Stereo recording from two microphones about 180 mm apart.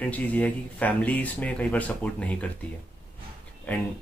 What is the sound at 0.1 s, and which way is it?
Speech, 10° left (ahead or behind).